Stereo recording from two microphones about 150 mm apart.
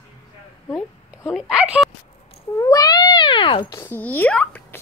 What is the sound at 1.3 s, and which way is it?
Speech, 5° right (ahead or behind).